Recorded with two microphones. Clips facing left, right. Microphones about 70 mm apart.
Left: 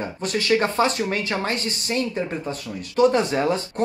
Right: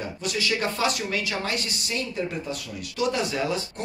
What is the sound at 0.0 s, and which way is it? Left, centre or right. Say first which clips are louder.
Speech: left 3 dB; left.